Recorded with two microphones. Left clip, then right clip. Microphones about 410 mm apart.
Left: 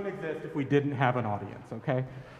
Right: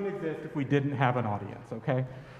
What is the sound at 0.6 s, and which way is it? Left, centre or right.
A man's voice, centre.